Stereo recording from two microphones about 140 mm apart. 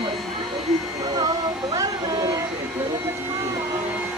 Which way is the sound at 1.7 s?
25° right (ahead or behind).